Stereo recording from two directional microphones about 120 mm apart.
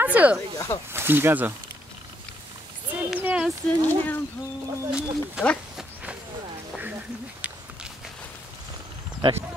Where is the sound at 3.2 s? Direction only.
15° right (ahead or behind).